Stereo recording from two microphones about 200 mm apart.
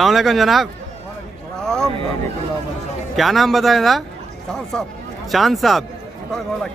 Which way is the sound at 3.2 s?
Centre (ahead or behind).